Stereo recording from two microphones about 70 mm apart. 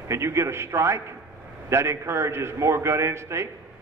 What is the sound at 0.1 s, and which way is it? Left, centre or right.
A man's voice, right.